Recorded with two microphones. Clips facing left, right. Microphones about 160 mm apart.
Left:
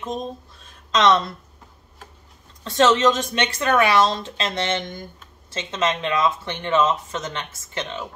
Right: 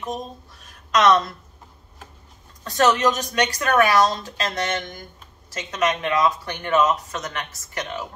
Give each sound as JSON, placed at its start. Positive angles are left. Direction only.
{"t": 0.9, "sound": "a woman's voice", "side_deg": 25}
{"t": 2.6, "sound": "a woman's voice", "side_deg": 25}